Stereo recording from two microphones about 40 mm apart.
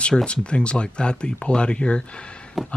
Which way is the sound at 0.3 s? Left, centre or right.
Left.